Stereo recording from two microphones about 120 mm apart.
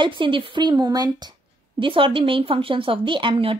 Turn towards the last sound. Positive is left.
turn(degrees=-50)  # may be behind; listen again after turning